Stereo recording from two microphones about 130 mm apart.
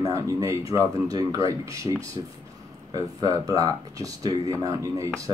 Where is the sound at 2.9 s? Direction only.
25° right (ahead or behind).